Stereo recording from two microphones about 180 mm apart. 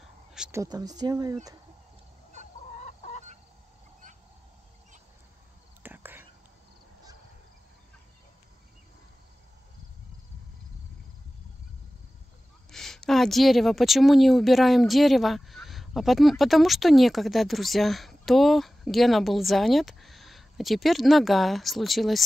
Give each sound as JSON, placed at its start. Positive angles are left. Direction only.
{"t": 0.5, "sound": "speech", "side_deg": -20}
{"t": 2.8, "sound": "chicken", "side_deg": 40}
{"t": 5.8, "sound": "whispering", "side_deg": -10}
{"t": 12.7, "sound": "a woman's voice", "side_deg": 0}